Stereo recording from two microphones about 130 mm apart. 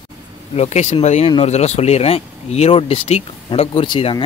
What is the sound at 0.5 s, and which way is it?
A man's voice, 55° left (ahead or behind).